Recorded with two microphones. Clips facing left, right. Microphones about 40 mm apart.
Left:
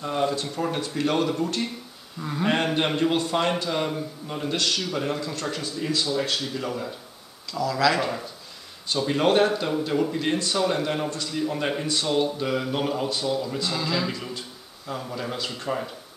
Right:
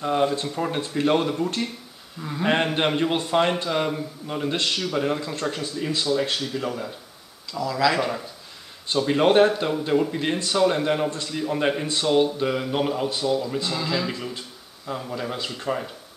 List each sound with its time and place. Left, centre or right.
0.0 s speech: centre
3.6 s speech: centre
8.9 s speech: centre
10.7 s speech: centre